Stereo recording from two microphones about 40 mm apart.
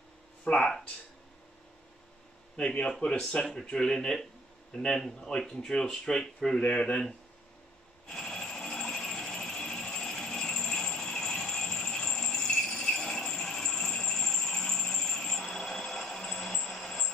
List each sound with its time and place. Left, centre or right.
0.5 s speech: left
2.5 s speech: left
3.7 s speech: centre
6.7 s speech: left
8.1 s sewing machine: centre
8.5 s a sound: centre
13.2 s jingle bell: centre